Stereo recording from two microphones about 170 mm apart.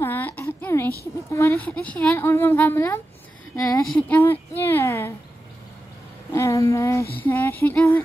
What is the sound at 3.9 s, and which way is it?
Speech, 10° left (ahead or behind).